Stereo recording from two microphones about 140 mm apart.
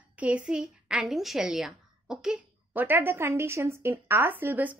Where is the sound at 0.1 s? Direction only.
10° right (ahead or behind).